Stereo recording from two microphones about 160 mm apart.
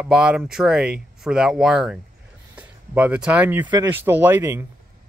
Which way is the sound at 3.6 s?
25° right (ahead or behind).